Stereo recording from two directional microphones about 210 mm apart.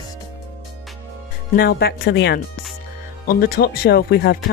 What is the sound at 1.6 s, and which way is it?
Speech, 45° left (ahead or behind).